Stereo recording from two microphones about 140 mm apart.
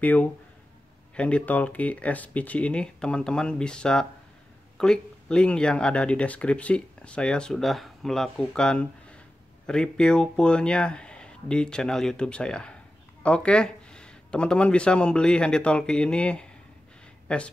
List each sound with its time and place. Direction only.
0.0 s speech: 10° left (ahead or behind)